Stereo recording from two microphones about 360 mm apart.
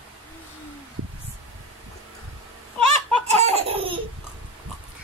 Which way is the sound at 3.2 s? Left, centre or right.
Centre.